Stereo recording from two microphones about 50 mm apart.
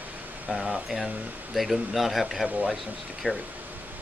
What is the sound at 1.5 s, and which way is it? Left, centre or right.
Speech, centre.